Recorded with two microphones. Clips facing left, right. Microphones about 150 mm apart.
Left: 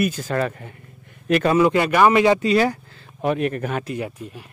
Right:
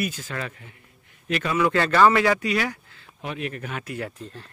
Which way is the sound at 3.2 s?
50° left (ahead or behind).